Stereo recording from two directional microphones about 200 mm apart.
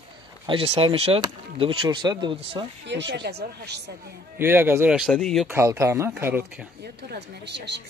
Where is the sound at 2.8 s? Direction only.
60° right (ahead or behind).